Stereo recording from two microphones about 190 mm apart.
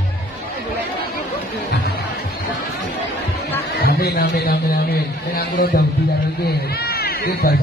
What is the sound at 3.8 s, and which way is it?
A man's voice, 55° left (ahead or behind).